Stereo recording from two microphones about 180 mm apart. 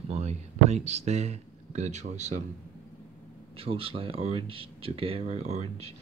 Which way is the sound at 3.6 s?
30° right (ahead or behind).